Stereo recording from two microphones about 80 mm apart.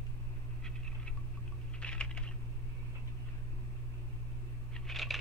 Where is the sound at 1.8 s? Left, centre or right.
Centre.